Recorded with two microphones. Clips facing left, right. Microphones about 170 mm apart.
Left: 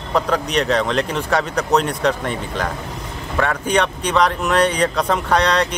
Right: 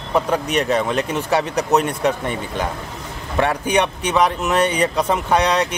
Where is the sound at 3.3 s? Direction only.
25° right (ahead or behind).